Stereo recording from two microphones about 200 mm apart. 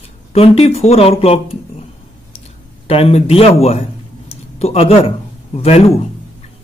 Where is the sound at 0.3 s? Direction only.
30° left (ahead or behind).